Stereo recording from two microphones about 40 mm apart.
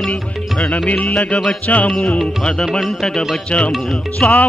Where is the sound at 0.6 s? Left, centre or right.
Left.